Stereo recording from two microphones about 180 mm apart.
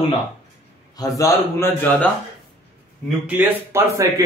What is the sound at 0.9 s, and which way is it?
A man's voice, 20° left (ahead or behind).